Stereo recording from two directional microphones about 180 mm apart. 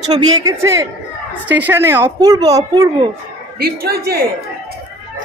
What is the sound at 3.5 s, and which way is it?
Speech, 60° right (ahead or behind).